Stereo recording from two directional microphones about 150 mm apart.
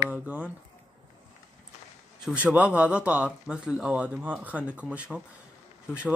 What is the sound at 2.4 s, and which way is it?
Speech, 10° right (ahead or behind).